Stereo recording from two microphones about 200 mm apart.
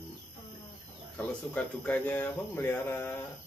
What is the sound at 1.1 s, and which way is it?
Speech, 5° left (ahead or behind).